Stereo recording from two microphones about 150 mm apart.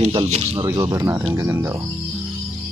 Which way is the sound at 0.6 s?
25° right (ahead or behind).